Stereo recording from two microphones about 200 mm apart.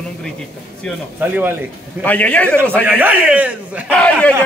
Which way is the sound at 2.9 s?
10° right (ahead or behind).